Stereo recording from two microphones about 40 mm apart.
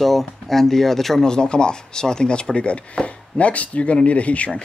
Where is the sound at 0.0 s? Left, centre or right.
Centre.